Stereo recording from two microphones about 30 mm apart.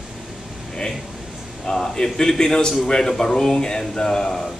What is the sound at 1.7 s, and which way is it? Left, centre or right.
Speech, left.